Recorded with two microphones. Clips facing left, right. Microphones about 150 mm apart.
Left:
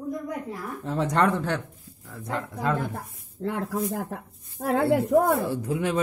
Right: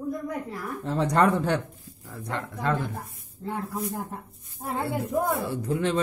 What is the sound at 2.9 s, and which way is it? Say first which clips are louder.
Speech: left 3 dB; 85° left.